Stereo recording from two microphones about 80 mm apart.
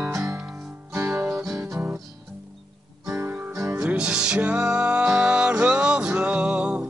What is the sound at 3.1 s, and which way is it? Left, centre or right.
Guitar, right.